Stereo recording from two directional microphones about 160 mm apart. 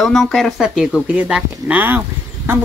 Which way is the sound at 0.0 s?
Centre (ahead or behind).